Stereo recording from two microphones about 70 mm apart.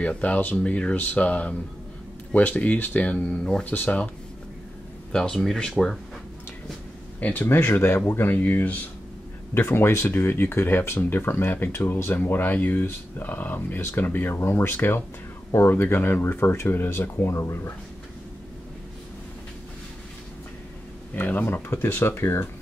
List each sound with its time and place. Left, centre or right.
0.0 s speech: centre
5.1 s speech: centre
7.2 s speech: left
21.1 s speech: left